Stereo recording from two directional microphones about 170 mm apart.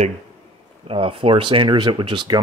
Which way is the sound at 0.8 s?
30° right (ahead or behind).